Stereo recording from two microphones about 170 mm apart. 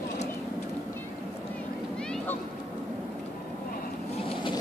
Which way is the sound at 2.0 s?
5° left (ahead or behind).